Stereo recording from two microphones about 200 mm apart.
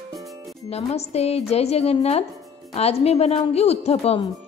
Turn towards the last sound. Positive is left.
turn(degrees=30)  # may be behind; listen again after turning